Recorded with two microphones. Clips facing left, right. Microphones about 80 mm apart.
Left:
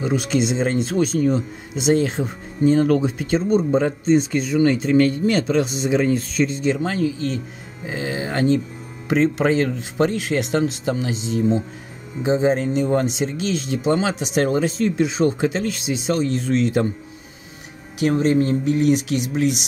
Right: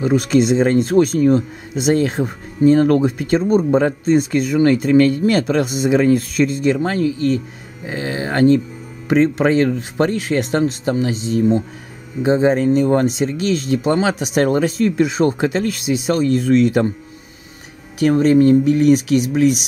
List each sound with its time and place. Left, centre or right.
0.0 s speech: right
18.0 s speech: right